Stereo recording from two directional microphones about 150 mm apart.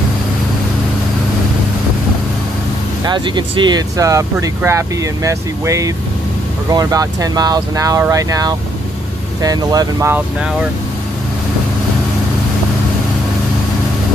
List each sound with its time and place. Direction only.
3.1 s speech: 30° right (ahead or behind)